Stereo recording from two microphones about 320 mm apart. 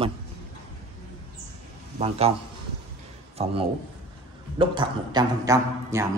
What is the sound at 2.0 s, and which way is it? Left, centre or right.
Speech, centre.